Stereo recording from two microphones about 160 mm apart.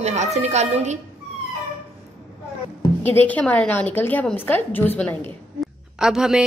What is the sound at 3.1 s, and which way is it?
A woman's voice, 10° left (ahead or behind).